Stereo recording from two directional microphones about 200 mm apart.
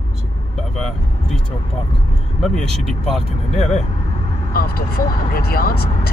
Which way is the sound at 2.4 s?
Centre (ahead or behind).